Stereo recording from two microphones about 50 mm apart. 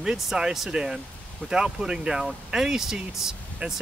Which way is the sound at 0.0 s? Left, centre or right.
Centre.